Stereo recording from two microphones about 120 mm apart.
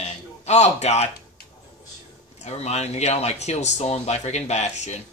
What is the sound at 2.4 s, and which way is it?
A man's voice, 65° left (ahead or behind).